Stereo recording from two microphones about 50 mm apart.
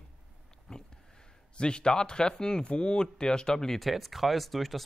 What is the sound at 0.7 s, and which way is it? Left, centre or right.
Speech, centre.